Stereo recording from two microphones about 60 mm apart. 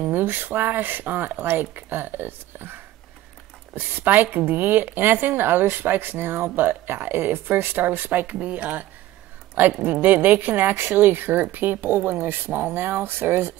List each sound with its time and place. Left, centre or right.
0.0 s a woman's voice: right
9.8 s a woman's voice: right